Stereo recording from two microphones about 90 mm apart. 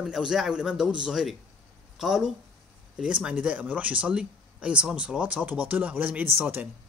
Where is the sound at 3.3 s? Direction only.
15° right (ahead or behind).